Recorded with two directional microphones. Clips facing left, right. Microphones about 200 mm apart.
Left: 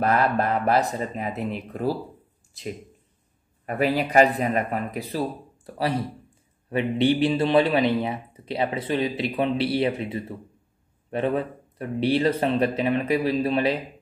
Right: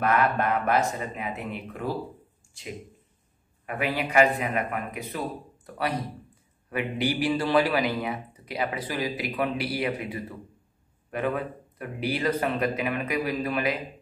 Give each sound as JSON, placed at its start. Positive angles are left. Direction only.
{"t": 0.0, "sound": "speech", "side_deg": 35}
{"t": 3.6, "sound": "a man's voice", "side_deg": 40}